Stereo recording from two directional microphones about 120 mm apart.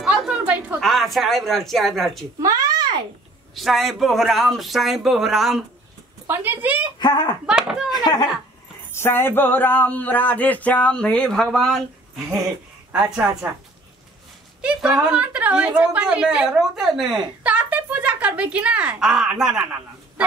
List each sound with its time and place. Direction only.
0.0 s a sound: 5° right (ahead or behind)
0.7 s speech: centre (ahead or behind)
2.4 s a sound: 30° right (ahead or behind)
3.5 s speech: centre (ahead or behind)
6.2 s speech: 15° right (ahead or behind)
7.0 s speech: 35° left (ahead or behind)
7.4 s a woman's voice: 5° right (ahead or behind)
7.9 s speech: 35° left (ahead or behind)
8.9 s speech: 20° left (ahead or behind); by 11.8 s 5° left (ahead or behind)
12.9 s a woman's voice: 10° right (ahead or behind)
14.6 s a woman's voice: 5° right (ahead or behind)